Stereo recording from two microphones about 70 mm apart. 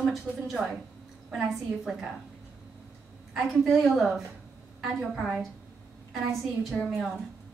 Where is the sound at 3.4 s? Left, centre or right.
Centre.